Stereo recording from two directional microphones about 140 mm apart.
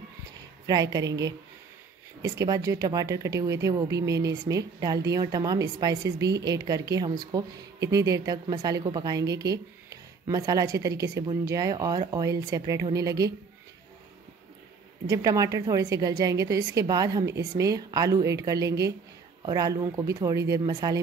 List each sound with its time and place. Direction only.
0.7 s speech: 25° right (ahead or behind)
15.0 s speech: 25° right (ahead or behind)